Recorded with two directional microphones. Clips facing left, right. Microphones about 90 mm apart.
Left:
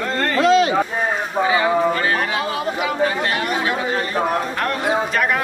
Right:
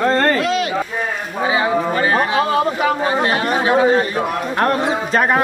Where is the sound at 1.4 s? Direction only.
25° right (ahead or behind).